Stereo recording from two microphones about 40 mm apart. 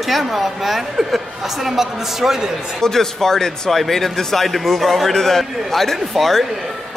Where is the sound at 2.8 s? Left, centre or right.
Centre.